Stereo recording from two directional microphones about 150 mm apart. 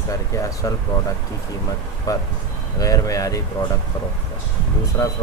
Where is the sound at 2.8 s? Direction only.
20° left (ahead or behind).